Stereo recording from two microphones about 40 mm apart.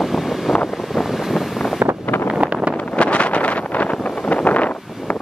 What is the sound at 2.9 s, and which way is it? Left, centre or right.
Vehicle, left.